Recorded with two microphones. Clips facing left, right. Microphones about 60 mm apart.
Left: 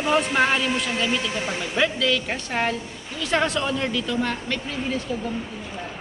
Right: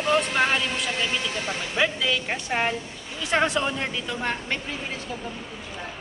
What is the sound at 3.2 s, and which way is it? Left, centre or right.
Speech, centre.